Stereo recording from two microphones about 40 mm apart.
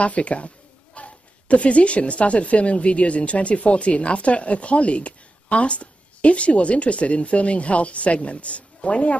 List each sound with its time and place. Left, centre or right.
0.0 s speech: left